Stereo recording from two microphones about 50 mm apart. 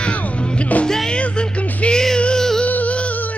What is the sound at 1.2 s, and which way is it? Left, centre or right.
Music, left.